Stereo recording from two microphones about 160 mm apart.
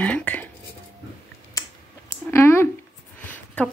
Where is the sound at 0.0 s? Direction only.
10° left (ahead or behind).